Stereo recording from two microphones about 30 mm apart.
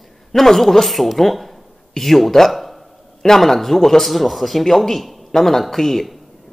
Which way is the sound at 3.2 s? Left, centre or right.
Centre.